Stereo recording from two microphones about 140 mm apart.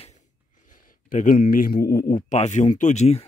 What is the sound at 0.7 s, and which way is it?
A man's voice, 70° left (ahead or behind).